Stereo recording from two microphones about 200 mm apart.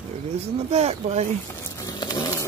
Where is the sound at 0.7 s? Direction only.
30° right (ahead or behind).